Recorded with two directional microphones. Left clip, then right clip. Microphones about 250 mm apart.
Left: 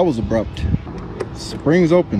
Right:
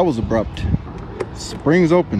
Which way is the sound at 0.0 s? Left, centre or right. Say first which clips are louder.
Even; centre.